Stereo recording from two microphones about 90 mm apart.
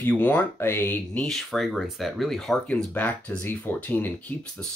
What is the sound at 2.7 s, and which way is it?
Speech, 20° left (ahead or behind).